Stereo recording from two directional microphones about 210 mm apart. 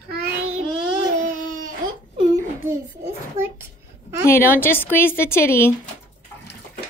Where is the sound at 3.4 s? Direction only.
10° right (ahead or behind).